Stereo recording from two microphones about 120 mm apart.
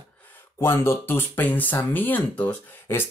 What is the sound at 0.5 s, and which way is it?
Speech, 20° left (ahead or behind).